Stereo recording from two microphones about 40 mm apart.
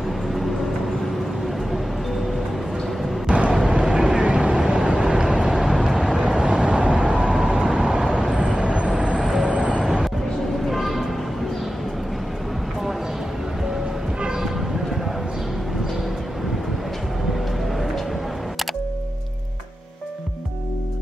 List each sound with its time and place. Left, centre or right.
3.3 s vehicle: right
5.5 s vehicle: centre; by 8.9 s right
9.2 s vehicle: centre
10.7 s a sound: centre